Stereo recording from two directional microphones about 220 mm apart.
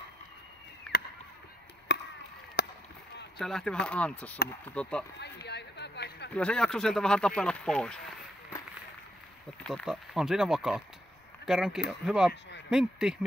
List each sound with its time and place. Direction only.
0.9 s a sound: centre (ahead or behind)
1.9 s chop: 50° left (ahead or behind)
2.6 s rowboat: 45° left (ahead or behind)
3.3 s speech: centre (ahead or behind)
5.2 s a sound: 50° left (ahead or behind)
6.3 s speech: 5° left (ahead or behind)
9.6 s speech: 5° left (ahead or behind)